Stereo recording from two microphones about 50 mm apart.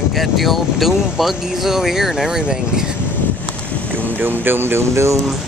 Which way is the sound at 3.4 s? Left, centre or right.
Left.